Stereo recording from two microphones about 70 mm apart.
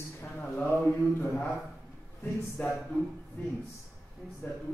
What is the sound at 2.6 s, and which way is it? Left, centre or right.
Speech, centre.